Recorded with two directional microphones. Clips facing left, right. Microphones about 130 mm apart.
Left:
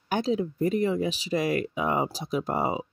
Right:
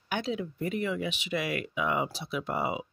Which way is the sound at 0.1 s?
35° left (ahead or behind).